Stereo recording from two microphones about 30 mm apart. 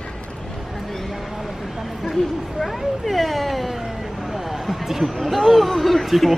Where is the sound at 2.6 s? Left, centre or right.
Centre.